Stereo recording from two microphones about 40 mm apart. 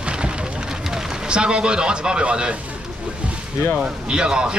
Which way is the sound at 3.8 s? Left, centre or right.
Right.